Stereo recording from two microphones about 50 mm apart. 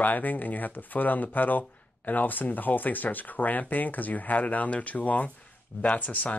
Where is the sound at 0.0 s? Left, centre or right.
Left.